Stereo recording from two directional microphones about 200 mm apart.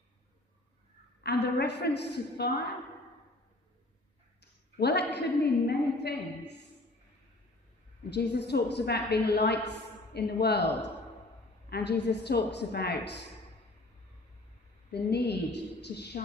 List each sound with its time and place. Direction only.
1.2 s a woman's voice: 55° left (ahead or behind)
4.7 s a woman's voice: 55° left (ahead or behind)
8.1 s a woman's voice: 55° left (ahead or behind)
14.9 s a woman's voice: 55° left (ahead or behind)